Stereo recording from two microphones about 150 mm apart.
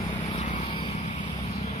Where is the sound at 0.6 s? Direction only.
35° left (ahead or behind).